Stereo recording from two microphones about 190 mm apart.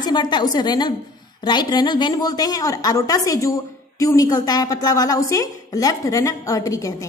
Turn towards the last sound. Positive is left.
turn(degrees=15)  # may be behind; listen again after turning